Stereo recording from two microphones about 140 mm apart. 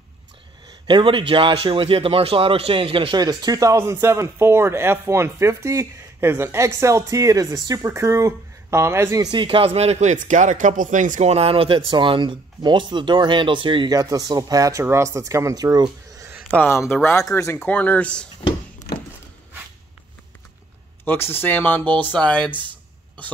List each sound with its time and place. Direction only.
0.7 s a man's voice: 35° right (ahead or behind)
16.5 s speech: 15° left (ahead or behind)
21.0 s speech: 15° left (ahead or behind)
22.5 s a sound: 35° right (ahead or behind)